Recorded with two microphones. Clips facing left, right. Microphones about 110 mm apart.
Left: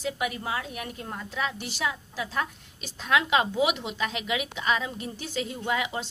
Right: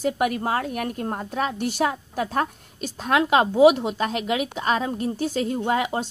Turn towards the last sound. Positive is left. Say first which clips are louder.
# right 6 dB
turn(degrees=-40)  # may be behind; listen again after turning